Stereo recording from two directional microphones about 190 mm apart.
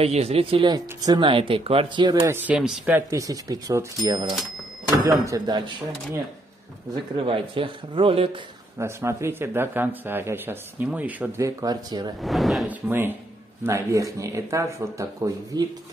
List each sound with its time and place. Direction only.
0.0 s speech: 30° right (ahead or behind); by 3.0 s 5° right (ahead or behind)
3.1 s a man's voice: 15° right (ahead or behind)
7.2 s speech: 30° right (ahead or behind)
8.7 s a man's voice: 15° right (ahead or behind)
12.2 s a man's voice: centre (ahead or behind); by 15.6 s 20° right (ahead or behind)